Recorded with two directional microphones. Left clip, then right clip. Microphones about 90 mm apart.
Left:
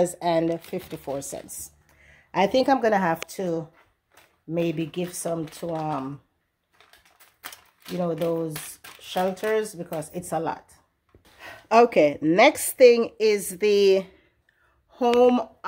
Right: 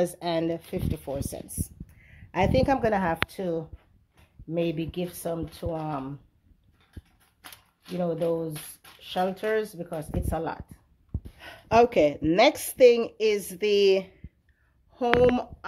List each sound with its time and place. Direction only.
0.0 s a woman's voice: 20° left (ahead or behind)
7.5 s a woman's voice: 20° left (ahead or behind)
14.9 s speech: 45° left (ahead or behind)